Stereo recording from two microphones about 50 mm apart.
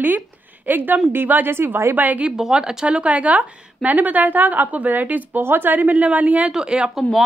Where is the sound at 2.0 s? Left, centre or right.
Right.